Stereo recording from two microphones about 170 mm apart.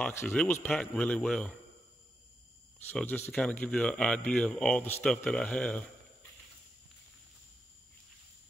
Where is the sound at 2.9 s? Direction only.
10° left (ahead or behind).